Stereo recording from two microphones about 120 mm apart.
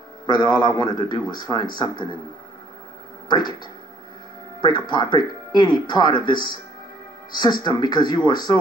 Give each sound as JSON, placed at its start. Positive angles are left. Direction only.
{"t": 0.3, "sound": "speech", "side_deg": 35}
{"t": 3.3, "sound": "speech", "side_deg": 40}
{"t": 4.6, "sound": "speech", "side_deg": 40}